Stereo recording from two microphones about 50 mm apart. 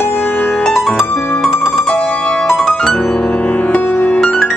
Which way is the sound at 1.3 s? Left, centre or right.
Centre.